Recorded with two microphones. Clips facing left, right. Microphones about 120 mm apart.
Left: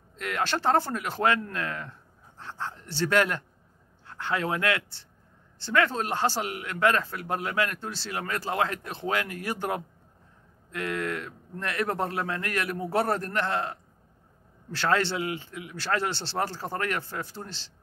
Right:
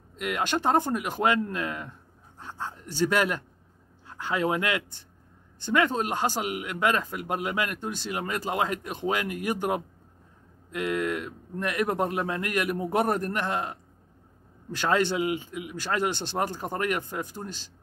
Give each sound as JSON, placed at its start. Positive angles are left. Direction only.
{"t": 0.1, "sound": "speech", "side_deg": -10}